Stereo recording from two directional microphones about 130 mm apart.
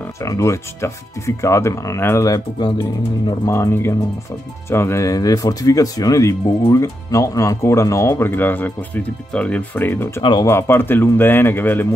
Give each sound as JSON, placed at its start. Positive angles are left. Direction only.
{"t": 0.2, "sound": "a man's voice", "side_deg": 25}